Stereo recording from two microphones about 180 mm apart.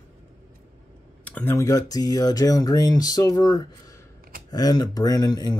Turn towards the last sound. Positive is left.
turn(degrees=25)  # may be behind; listen again after turning